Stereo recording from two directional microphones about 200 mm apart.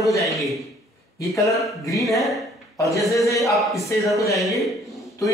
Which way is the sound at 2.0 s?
Centre (ahead or behind).